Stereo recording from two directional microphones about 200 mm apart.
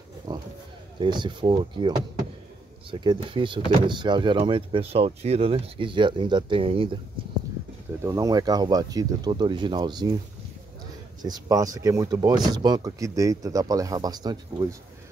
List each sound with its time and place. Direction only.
0.9 s speech: 20° right (ahead or behind)
8.0 s speech: 15° right (ahead or behind)
11.2 s speech: 20° right (ahead or behind)